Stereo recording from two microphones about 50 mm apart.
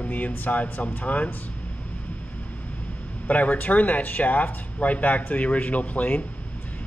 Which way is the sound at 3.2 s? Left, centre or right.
Left.